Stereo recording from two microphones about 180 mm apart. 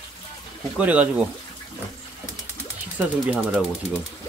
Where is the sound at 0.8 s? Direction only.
10° right (ahead or behind).